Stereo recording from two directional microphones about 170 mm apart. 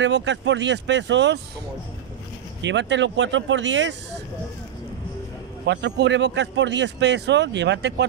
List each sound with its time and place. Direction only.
0.0 s speech: 90° right
2.6 s speech: 90° right
5.7 s speech: 90° right